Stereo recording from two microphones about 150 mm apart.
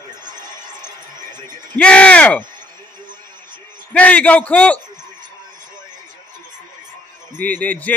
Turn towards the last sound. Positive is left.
turn(degrees=10)  # may be behind; listen again after turning